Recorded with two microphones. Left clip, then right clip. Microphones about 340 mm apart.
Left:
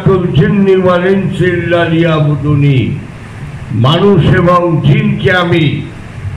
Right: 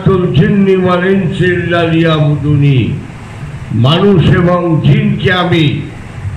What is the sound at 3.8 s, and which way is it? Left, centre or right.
A man's voice, centre.